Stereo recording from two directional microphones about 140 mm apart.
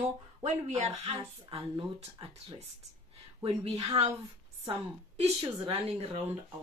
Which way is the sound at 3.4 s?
45° right (ahead or behind).